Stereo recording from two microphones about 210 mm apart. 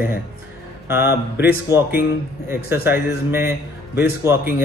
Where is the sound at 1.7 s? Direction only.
15° right (ahead or behind).